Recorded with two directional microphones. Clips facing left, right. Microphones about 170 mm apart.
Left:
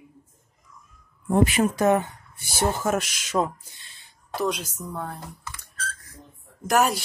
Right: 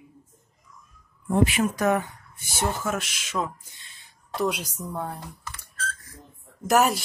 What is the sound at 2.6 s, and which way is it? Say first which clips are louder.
Speech: left 4 dB; 40° left (ahead or behind).